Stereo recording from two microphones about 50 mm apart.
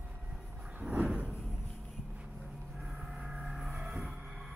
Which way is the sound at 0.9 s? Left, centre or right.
Right.